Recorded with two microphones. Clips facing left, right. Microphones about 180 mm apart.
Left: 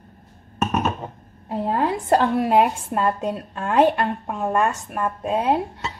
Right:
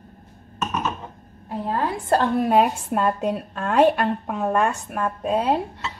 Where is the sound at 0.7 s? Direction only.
60° left (ahead or behind).